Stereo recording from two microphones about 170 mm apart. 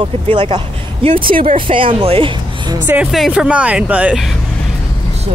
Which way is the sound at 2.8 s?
5° right (ahead or behind).